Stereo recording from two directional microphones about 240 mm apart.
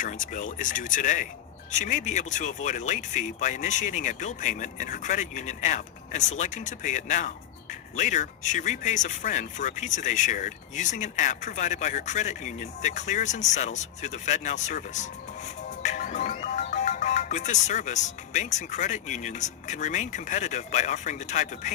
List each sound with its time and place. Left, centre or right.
0.0 s speech: left